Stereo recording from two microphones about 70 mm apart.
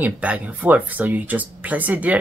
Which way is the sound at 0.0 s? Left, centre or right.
Right.